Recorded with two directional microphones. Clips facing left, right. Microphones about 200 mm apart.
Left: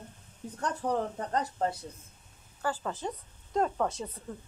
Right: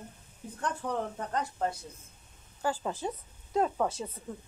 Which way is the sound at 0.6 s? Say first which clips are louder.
Left 2 dB; 40° left (ahead or behind).